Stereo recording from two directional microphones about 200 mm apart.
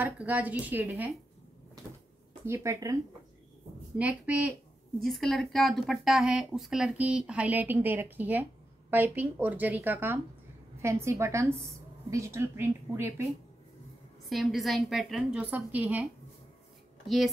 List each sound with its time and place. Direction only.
0.0 s speech: 10° right (ahead or behind)
2.4 s speech: 15° right (ahead or behind)
4.0 s speech: 5° right (ahead or behind)
14.3 s speech: centre (ahead or behind)